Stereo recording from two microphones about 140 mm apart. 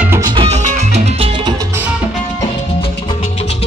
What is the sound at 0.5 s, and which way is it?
Music, 50° right (ahead or behind).